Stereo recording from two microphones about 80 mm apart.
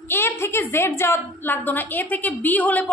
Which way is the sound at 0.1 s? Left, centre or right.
Left.